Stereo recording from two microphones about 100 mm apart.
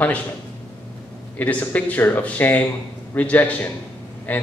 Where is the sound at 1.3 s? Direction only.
15° left (ahead or behind).